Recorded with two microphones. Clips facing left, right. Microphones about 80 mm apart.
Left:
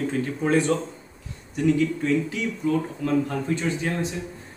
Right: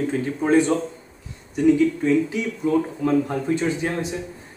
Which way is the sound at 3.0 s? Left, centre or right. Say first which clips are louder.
Right 3 dB; centre.